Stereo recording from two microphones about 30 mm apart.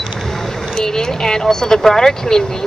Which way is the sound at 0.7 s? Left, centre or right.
Centre.